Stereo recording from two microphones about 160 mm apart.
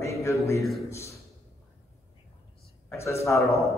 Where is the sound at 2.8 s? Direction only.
15° left (ahead or behind).